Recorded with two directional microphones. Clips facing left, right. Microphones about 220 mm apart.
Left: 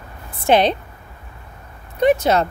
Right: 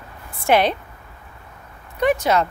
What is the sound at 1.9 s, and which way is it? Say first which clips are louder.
Speech: left 3 dB; 25° left (ahead or behind).